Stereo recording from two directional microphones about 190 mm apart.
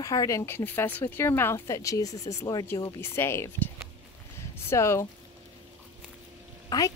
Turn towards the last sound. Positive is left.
turn(degrees=20)  # may be behind; listen again after turning